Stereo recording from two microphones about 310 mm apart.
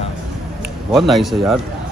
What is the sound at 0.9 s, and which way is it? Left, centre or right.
Speech, centre.